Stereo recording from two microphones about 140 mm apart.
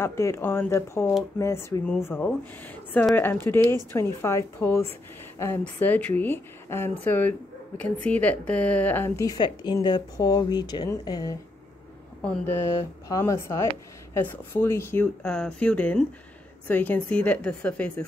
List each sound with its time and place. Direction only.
0.0 s speech: 20° left (ahead or behind)
12.2 s speech: 10° left (ahead or behind)
15.2 s speech: 5° left (ahead or behind)